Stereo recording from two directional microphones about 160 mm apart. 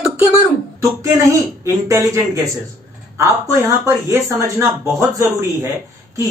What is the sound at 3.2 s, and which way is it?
Speech, 20° right (ahead or behind).